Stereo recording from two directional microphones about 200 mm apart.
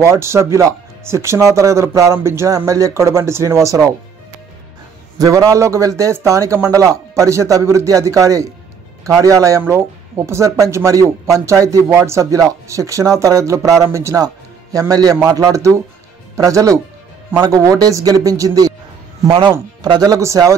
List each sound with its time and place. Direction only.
0.0 s speech: 15° right (ahead or behind)
5.2 s speech: 15° right (ahead or behind)